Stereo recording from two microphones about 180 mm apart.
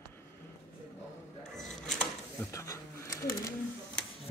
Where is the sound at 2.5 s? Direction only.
15° left (ahead or behind).